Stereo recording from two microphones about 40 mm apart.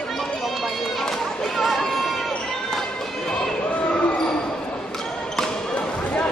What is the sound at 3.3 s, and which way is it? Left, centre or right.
Run, centre.